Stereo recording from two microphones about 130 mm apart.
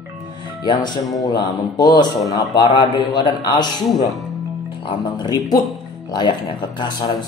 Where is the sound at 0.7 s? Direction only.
35° left (ahead or behind).